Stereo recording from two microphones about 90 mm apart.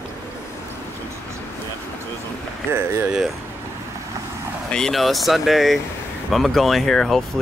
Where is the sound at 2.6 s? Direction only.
25° right (ahead or behind).